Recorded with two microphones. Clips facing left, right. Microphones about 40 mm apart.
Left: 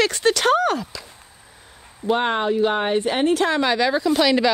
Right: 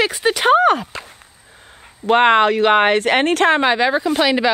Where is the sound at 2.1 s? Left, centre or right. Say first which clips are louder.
Right 8 dB; right.